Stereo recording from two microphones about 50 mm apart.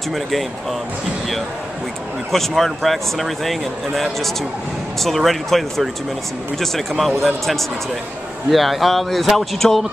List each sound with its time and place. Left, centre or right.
0.1 s speech: centre
2.3 s speech: centre
8.5 s speech: centre